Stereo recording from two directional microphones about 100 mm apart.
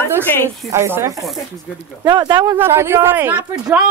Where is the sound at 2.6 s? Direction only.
25° right (ahead or behind); by 3.9 s 10° right (ahead or behind).